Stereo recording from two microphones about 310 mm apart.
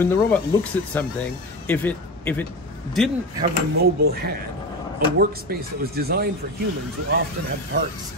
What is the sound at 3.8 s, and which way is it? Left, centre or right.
Speech, right.